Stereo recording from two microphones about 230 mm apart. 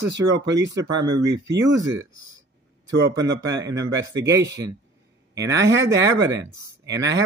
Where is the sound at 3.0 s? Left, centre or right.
Right.